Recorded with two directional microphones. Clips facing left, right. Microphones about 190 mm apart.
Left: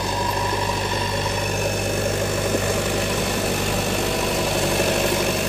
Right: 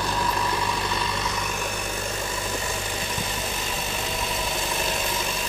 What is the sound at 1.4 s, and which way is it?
Vehicle, 45° left (ahead or behind).